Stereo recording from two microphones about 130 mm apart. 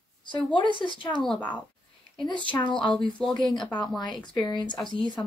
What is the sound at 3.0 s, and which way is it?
Speech, 5° left (ahead or behind).